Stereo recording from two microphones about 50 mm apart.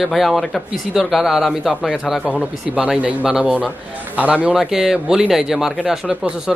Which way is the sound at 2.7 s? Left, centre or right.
Right.